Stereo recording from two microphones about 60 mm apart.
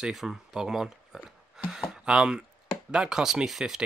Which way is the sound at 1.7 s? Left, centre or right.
Centre.